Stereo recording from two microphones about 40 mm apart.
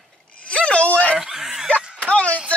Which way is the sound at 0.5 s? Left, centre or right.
Left.